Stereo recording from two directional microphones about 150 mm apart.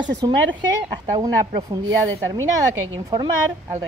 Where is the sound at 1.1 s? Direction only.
25° right (ahead or behind).